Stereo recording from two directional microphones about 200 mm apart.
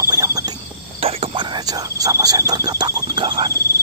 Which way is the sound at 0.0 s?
15° right (ahead or behind).